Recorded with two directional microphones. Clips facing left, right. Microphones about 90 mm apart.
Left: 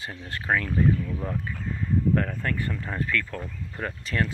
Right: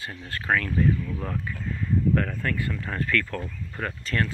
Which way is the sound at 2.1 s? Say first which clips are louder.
Even; 25° left (ahead or behind).